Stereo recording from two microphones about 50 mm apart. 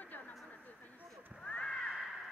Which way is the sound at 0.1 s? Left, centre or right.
Left.